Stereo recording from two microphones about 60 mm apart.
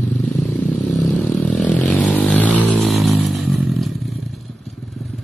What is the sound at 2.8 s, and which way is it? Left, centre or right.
Vehicle, centre.